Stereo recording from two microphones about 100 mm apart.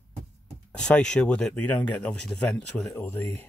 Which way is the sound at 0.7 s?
10° left (ahead or behind).